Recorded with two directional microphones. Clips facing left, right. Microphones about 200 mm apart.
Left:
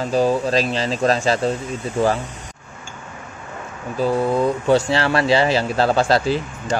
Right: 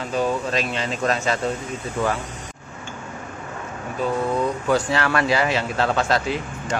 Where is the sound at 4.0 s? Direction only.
35° left (ahead or behind).